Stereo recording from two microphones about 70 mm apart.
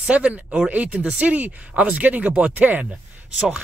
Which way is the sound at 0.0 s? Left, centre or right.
Centre.